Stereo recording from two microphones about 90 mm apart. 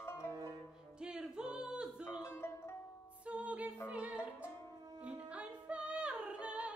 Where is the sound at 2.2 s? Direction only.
30° left (ahead or behind).